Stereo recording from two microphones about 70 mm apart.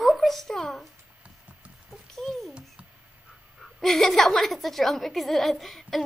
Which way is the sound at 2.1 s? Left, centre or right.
Centre.